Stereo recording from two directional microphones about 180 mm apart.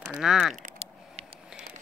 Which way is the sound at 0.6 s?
40° right (ahead or behind).